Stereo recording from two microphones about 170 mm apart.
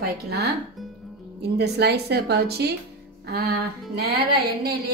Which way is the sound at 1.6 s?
75° right (ahead or behind).